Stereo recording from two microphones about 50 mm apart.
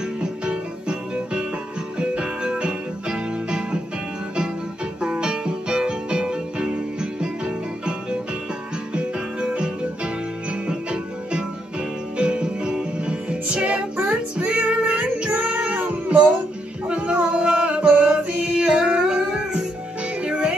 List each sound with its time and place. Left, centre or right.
0.2 s music: right
5.0 s music: centre
15.3 s child singing: right
15.8 s cat: right
16.8 s a sound: right
20.2 s music: right